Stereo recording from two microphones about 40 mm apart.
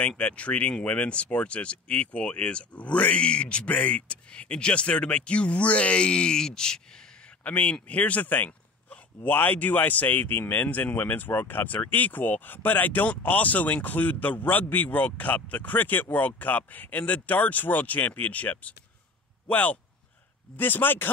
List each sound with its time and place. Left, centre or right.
0.2 s speech: left
3.2 s speech: left
4.3 s speech: left
7.4 s speech: left
8.5 s a sound: left
9.3 s speech: left
10.6 s speech: left
20.5 s speech: left